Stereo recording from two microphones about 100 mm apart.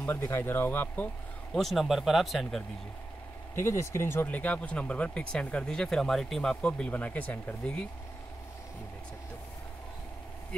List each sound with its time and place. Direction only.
0.0 s speech: 20° left (ahead or behind)
1.5 s speech: centre (ahead or behind)
3.5 s speech: 30° left (ahead or behind); by 7.8 s 10° left (ahead or behind)